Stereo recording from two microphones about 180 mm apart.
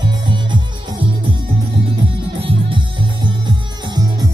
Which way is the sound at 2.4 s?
25° right (ahead or behind).